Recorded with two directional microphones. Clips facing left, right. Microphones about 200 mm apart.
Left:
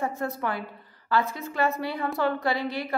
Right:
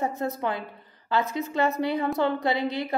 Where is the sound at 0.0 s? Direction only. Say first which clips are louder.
Right 2 dB; 20° right (ahead or behind).